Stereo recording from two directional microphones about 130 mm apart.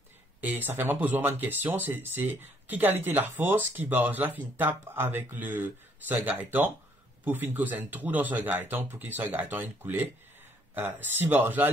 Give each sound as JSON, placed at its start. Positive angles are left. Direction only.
{"t": 0.4, "sound": "speech", "side_deg": -15}